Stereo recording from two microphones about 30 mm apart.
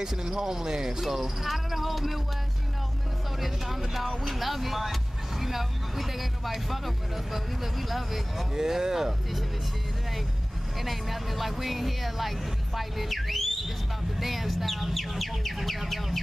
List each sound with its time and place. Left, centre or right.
0.0 s speech: centre
1.5 s cricket: centre
3.3 s speech: centre
8.5 s speech: centre
10.8 s speech: centre